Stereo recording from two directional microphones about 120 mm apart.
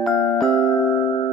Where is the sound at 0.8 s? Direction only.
35° left (ahead or behind).